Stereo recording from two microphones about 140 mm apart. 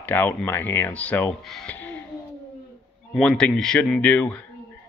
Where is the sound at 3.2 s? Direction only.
5° left (ahead or behind).